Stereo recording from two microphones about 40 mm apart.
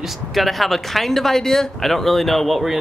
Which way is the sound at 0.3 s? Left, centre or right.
Centre.